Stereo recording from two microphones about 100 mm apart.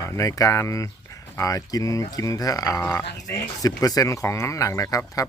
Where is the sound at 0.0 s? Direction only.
35° left (ahead or behind).